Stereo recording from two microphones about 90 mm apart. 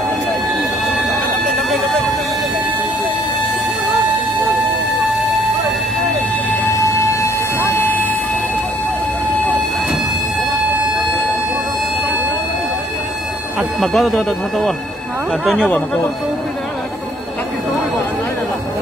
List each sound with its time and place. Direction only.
6.7 s a sound: 30° left (ahead or behind)
7.8 s vehicle: 25° left (ahead or behind)
13.9 s speech: centre (ahead or behind)